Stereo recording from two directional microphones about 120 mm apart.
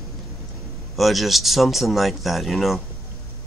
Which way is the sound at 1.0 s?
Centre (ahead or behind).